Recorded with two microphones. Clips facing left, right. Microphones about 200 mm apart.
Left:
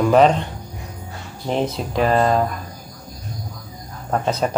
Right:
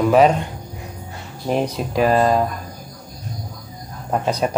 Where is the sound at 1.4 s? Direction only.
10° right (ahead or behind).